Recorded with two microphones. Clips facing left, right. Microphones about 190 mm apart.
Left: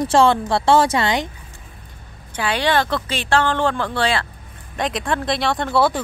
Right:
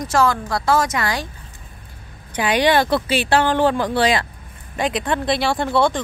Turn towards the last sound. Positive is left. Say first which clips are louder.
# even
turn(degrees=0)  # may be behind; listen again after turning